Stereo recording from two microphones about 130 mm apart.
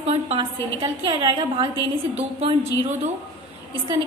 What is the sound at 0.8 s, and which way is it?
Speech, 35° right (ahead or behind).